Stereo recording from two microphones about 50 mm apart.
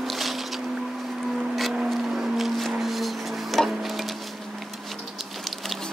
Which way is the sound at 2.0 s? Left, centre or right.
Centre.